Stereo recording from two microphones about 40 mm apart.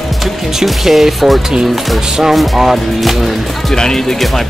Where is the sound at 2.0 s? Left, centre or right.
Centre.